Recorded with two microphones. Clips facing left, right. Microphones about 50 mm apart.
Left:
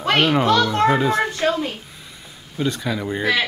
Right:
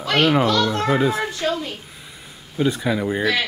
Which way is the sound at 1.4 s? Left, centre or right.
Left.